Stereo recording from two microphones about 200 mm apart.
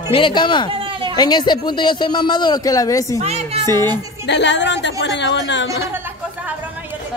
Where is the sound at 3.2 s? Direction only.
30° right (ahead or behind).